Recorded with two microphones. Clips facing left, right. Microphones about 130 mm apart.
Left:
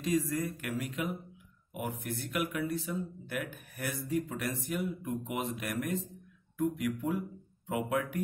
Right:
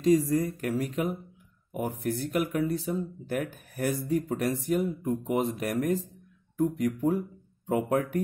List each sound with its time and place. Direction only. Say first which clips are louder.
0.0 s speech: right 8 dB; 30° right (ahead or behind)